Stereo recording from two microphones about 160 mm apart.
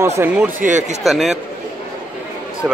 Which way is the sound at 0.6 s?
50° right (ahead or behind).